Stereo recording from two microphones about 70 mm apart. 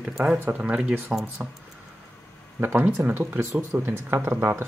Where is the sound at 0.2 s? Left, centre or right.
Centre.